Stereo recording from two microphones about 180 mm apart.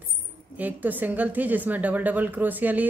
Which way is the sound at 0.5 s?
10° right (ahead or behind).